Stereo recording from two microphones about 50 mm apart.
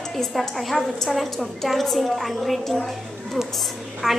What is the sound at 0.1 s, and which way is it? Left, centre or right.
A woman's voice, centre.